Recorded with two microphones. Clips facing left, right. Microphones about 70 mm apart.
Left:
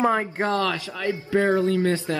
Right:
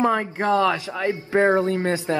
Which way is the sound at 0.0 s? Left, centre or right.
Centre.